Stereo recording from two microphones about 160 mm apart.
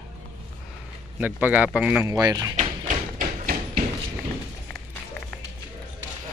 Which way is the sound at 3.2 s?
60° right (ahead or behind).